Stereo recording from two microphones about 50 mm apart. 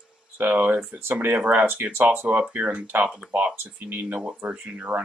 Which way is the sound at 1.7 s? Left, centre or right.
Right.